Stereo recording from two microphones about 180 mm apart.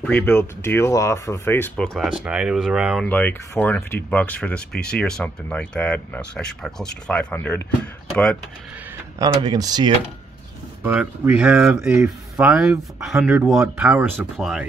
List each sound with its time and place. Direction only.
0.0 s speech: 10° left (ahead or behind)
2.0 s speech: 5° right (ahead or behind)
3.1 s speech: 10° left (ahead or behind)
9.2 s speech: 20° right (ahead or behind)
10.8 s speech: 10° right (ahead or behind)